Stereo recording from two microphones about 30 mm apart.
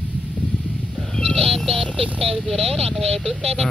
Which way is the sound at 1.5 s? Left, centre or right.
Centre.